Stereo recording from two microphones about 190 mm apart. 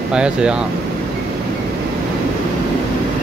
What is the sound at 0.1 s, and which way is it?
Speech, 5° right (ahead or behind).